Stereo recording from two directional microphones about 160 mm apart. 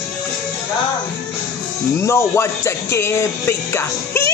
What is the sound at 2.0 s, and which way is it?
Speech, 15° left (ahead or behind).